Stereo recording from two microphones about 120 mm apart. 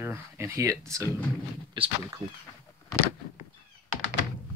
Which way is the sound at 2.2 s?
50° right (ahead or behind).